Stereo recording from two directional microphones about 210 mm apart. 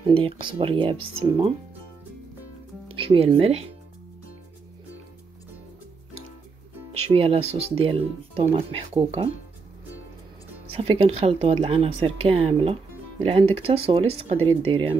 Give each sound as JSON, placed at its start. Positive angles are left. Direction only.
{"t": 0.0, "sound": "speech", "side_deg": -25}
{"t": 2.9, "sound": "speech", "side_deg": -25}
{"t": 6.9, "sound": "speech", "side_deg": -25}
{"t": 10.7, "sound": "speech", "side_deg": -25}